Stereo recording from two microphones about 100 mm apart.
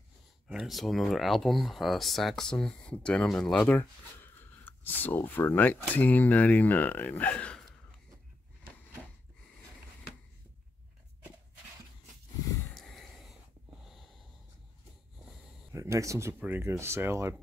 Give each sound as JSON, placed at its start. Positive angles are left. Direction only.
{"t": 0.5, "sound": "speech", "side_deg": -5}
{"t": 12.7, "sound": "a sound", "side_deg": 0}
{"t": 13.8, "sound": "wheeze", "side_deg": 0}
{"t": 15.7, "sound": "speech", "side_deg": -30}
{"t": 16.3, "sound": "speech", "side_deg": -20}